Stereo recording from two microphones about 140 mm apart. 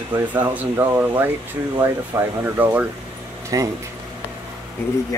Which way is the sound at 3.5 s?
25° right (ahead or behind).